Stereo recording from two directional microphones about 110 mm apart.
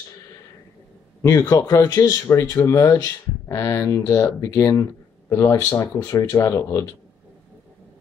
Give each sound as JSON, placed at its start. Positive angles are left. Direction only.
{"t": 1.5, "sound": "speech", "side_deg": 30}